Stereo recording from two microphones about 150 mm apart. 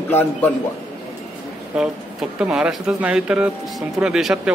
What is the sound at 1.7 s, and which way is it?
Speech, 5° right (ahead or behind).